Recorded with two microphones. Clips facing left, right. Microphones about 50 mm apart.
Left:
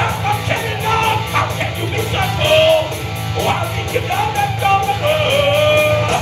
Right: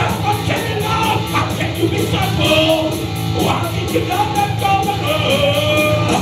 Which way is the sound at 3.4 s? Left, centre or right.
Left.